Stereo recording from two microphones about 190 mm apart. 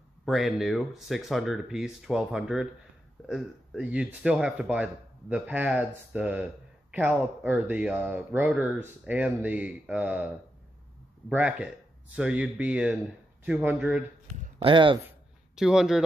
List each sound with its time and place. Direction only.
0.2 s a man's voice: centre (ahead or behind)
14.6 s speech: 25° right (ahead or behind)
15.0 s a sound: 5° right (ahead or behind)